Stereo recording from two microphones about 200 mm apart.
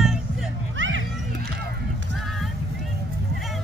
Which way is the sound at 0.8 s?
70° right (ahead or behind).